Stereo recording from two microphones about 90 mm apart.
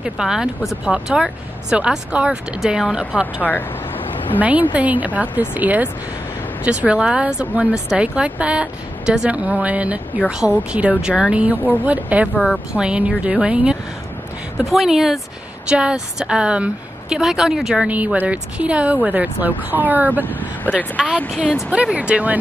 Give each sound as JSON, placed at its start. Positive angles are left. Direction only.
{"t": 0.0, "sound": "speech", "side_deg": -5}
{"t": 3.4, "sound": "speech", "side_deg": 20}
{"t": 4.4, "sound": "speech", "side_deg": -15}
{"t": 20.2, "sound": "speech", "side_deg": 20}
{"t": 21.9, "sound": "speech", "side_deg": -15}